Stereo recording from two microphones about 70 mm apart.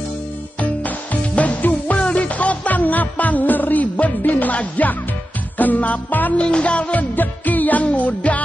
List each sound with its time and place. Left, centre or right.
0.6 s music: left